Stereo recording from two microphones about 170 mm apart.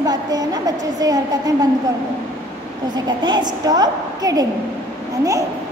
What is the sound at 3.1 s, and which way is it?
A woman's voice, 25° right (ahead or behind).